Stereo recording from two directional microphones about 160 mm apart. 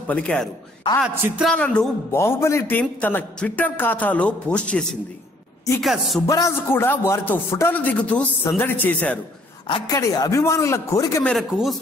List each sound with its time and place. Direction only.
0.0 s a woman's voice: 5° left (ahead or behind)
1.0 s a woman's voice: 5° right (ahead or behind)
1.5 s a man's voice: 5° left (ahead or behind)
6.2 s a man's voice: 20° left (ahead or behind)
9.7 s a woman's voice: 30° left (ahead or behind)
11.2 s speech: centre (ahead or behind)